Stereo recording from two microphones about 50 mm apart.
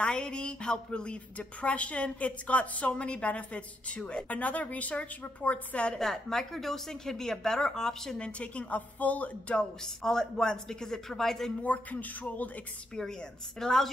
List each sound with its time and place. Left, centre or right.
0.0 s a woman's voice: centre
5.9 s a woman's voice: centre
8.2 s a woman's voice: left
9.6 s a woman's voice: centre
11.6 s speech: left
13.6 s a woman's voice: centre